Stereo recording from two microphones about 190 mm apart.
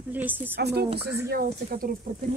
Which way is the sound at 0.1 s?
10° right (ahead or behind).